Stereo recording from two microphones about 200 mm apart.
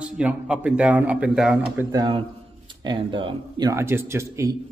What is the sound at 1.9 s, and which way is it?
A man's voice, 25° right (ahead or behind).